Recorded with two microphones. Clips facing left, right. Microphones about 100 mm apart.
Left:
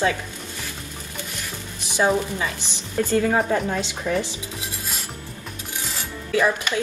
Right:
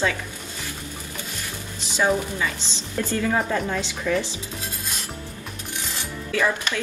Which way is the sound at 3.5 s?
20° left (ahead or behind).